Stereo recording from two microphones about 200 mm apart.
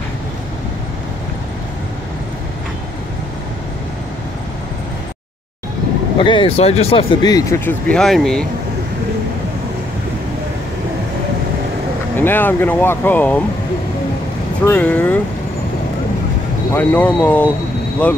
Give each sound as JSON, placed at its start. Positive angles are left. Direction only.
{"t": 6.1, "sound": "speech", "side_deg": 25}
{"t": 12.2, "sound": "speech", "side_deg": 10}
{"t": 14.6, "sound": "speech", "side_deg": 10}
{"t": 16.7, "sound": "speech", "side_deg": 10}